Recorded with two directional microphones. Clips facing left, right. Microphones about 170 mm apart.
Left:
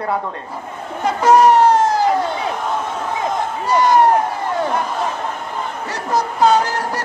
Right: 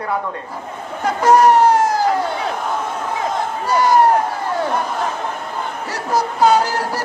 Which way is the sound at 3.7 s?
5° right (ahead or behind).